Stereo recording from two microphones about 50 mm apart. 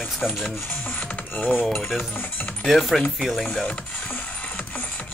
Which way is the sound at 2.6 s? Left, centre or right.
Centre.